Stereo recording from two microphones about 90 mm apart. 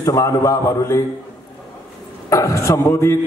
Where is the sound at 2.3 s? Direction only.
35° left (ahead or behind).